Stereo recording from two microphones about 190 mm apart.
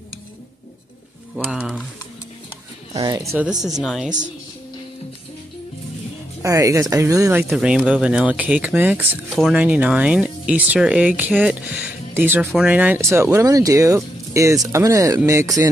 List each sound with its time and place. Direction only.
1.3 s speech: 5° right (ahead or behind)
2.9 s speech: 20° right (ahead or behind)
3.8 s speech: centre (ahead or behind)
6.4 s speech: 15° right (ahead or behind)